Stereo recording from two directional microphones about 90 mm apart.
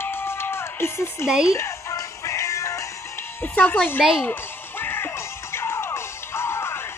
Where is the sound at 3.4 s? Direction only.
20° left (ahead or behind).